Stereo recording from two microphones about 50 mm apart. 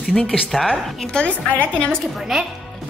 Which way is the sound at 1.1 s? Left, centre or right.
Left.